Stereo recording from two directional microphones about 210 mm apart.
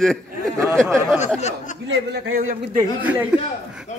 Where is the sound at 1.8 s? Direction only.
60° right (ahead or behind).